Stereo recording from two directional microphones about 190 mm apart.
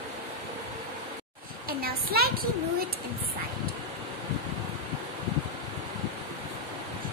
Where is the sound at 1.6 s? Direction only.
55° right (ahead or behind).